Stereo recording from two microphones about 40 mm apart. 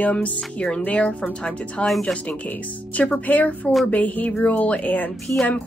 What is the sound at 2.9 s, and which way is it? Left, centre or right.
Speech, left.